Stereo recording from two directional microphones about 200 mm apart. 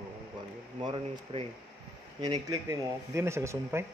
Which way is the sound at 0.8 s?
30° right (ahead or behind).